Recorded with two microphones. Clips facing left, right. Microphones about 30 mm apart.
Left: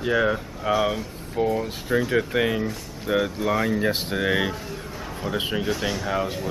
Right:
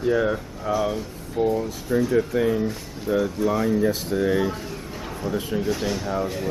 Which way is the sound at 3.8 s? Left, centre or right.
Left.